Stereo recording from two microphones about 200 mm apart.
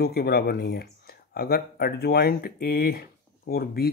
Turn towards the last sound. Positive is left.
turn(degrees=50)  # may be behind; listen again after turning